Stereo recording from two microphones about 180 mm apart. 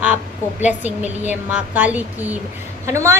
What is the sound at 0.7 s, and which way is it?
A woman's voice, 10° right (ahead or behind).